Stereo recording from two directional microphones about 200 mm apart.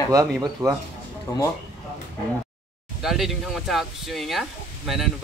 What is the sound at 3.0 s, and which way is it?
Speech, centre (ahead or behind).